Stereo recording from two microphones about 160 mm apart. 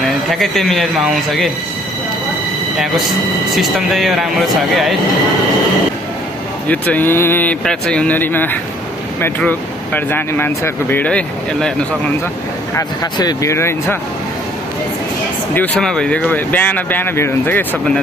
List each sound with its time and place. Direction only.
0.3 s speech: centre (ahead or behind)
3.5 s speech: centre (ahead or behind)
6.7 s speech: 10° left (ahead or behind)
12.7 s speech: 25° left (ahead or behind)
15.5 s speech: 5° left (ahead or behind)